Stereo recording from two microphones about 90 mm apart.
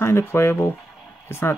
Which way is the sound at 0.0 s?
30° left (ahead or behind).